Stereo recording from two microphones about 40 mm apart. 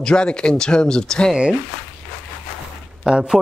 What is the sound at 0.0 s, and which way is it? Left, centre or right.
Speech, left.